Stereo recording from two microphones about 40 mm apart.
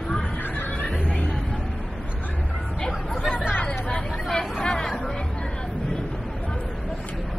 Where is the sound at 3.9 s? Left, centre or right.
Left.